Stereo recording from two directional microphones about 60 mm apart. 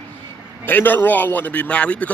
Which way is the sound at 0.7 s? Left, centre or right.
Left.